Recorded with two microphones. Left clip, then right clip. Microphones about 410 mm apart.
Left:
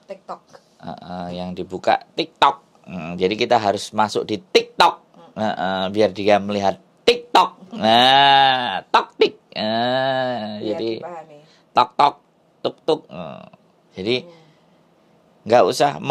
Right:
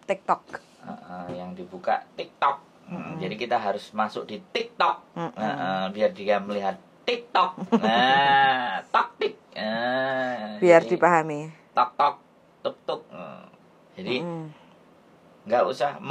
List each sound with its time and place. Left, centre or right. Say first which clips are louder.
0.1 s speech: right 9 dB; right
1.0 s speech: left 6 dB; left
11.7 s speech: left 6 dB; left
13.9 s a man's voice: left 7 dB; left
15.4 s speech: left 8 dB; left